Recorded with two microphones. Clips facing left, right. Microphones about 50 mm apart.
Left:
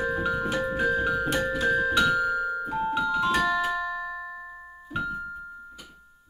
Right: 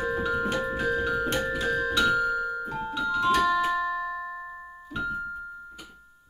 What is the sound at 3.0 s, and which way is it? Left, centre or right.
Music, centre.